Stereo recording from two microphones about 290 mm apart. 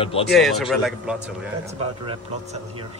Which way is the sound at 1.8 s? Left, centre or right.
Right.